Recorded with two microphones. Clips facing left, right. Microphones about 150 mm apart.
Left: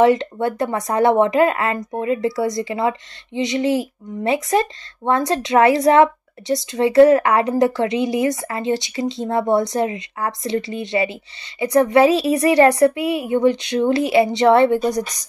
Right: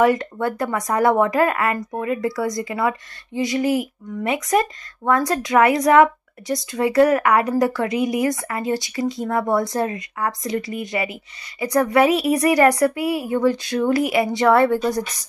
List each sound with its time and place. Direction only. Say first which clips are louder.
0.0 s speech: left 3 dB; 25° left (ahead or behind)